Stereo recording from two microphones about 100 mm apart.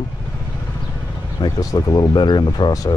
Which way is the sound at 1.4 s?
40° left (ahead or behind).